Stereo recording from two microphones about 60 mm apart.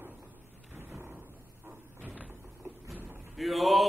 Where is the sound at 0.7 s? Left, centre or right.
Right.